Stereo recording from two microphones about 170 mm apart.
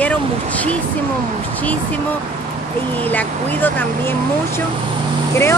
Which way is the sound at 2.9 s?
10° left (ahead or behind).